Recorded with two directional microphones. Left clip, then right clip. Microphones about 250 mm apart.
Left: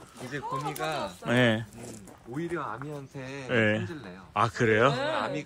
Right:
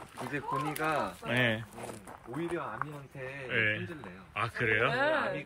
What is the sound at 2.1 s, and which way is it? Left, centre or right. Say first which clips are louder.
Speech: left 3 dB; centre.